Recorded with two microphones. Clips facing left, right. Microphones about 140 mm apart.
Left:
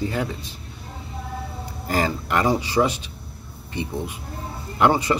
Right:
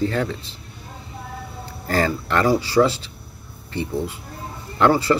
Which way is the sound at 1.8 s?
15° left (ahead or behind).